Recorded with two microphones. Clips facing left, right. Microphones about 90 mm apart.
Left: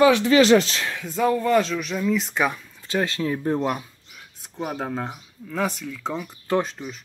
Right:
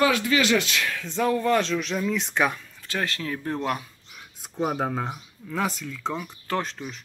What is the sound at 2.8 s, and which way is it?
Speech, 25° left (ahead or behind).